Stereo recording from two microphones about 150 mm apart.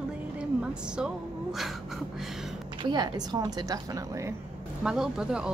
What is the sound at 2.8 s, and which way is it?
A woman's voice, 25° right (ahead or behind).